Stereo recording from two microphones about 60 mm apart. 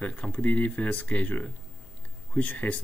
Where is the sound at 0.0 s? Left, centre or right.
Left.